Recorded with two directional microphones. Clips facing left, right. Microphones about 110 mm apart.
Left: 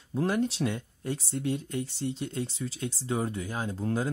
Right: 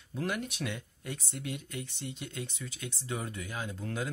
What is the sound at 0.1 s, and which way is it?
Speech, 30° left (ahead or behind).